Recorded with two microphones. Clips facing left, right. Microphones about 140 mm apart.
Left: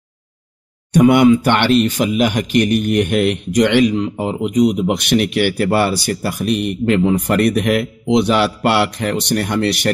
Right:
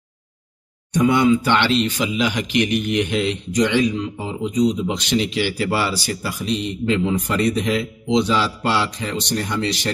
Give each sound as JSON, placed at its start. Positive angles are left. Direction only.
{"t": 0.9, "sound": "speech", "side_deg": 70}